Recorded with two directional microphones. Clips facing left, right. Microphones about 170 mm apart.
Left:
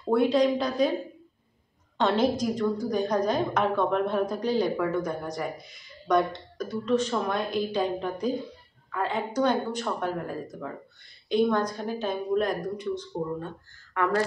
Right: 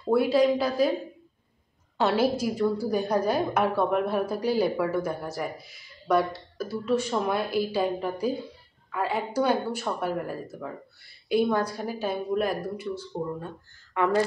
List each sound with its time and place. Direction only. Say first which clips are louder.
0.1 s speech: right 1 dB; 5° right (ahead or behind)
2.0 s a woman's voice: even; 5° right (ahead or behind)
13.9 s a woman's voice: right 2 dB; 15° right (ahead or behind)